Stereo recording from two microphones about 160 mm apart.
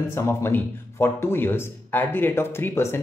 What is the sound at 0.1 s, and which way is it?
A man's voice, 15° left (ahead or behind).